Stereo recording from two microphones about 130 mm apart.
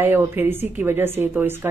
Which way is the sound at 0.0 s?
15° right (ahead or behind).